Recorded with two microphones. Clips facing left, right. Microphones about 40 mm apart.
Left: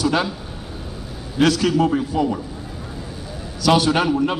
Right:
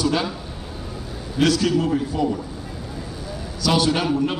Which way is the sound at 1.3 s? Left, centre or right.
Left.